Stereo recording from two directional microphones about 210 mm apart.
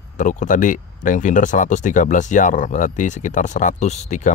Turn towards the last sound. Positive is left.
turn(degrees=35)  # may be behind; listen again after turning